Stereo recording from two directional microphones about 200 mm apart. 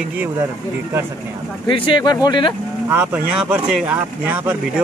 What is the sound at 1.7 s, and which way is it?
Speech, 25° left (ahead or behind).